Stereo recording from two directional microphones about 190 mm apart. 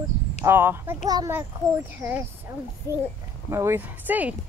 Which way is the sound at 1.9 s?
10° right (ahead or behind).